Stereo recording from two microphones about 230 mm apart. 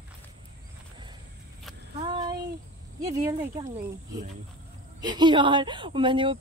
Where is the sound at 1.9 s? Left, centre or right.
Centre.